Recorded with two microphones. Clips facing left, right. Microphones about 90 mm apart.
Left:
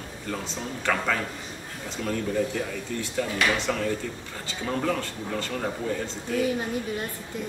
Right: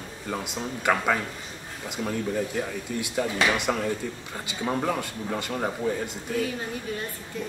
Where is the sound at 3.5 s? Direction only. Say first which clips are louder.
Even; 15° right (ahead or behind).